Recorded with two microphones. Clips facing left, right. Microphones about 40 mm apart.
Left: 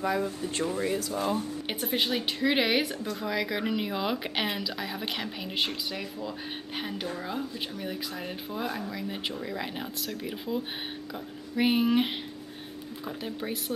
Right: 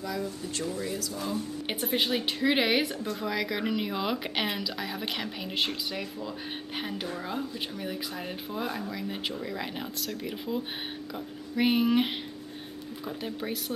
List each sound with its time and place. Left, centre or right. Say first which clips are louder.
0.0 s speech: left 5 dB; left
1.7 s a woman's voice: right 1 dB; centre
13.2 s a woman's voice: even; centre